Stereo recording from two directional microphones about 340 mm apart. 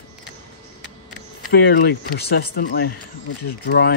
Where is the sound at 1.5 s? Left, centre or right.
Left.